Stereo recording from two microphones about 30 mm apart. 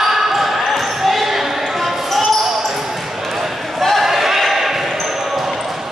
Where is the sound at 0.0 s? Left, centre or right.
Centre.